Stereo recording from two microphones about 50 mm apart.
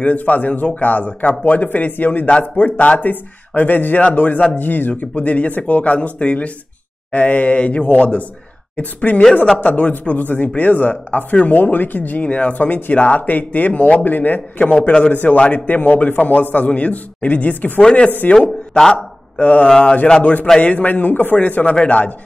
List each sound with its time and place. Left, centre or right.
0.0 s speech: left
4.6 s speech: left
14.9 s speech: centre
18.8 s a sound: centre
19.4 s speech: left